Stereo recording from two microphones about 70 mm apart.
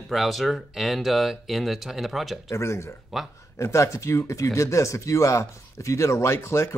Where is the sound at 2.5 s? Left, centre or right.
Left.